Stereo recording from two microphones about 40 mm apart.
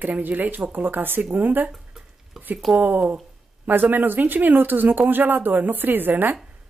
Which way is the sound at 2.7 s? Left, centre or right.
Right.